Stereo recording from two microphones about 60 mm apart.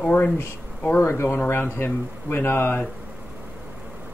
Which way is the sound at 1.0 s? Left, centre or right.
Left.